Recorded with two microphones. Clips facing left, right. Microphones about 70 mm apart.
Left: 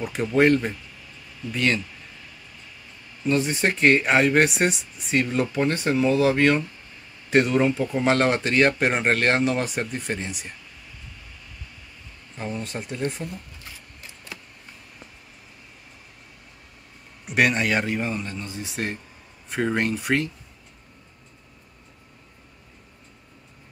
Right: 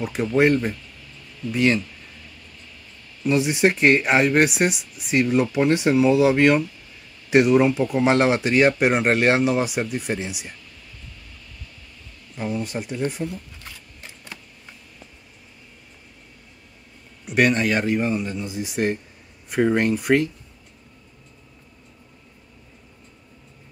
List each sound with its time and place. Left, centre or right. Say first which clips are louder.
0.0 s a man's voice: right 1 dB; centre
3.3 s speech: right 3 dB; centre
12.5 s a man's voice: right 3 dB; centre
17.3 s a man's voice: right 2 dB; centre